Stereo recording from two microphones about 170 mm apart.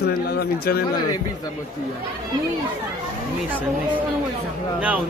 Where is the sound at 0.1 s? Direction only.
65° left (ahead or behind).